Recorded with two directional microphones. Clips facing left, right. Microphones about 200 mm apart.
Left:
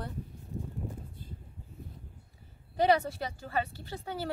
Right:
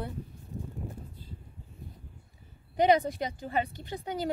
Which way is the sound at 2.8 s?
15° right (ahead or behind).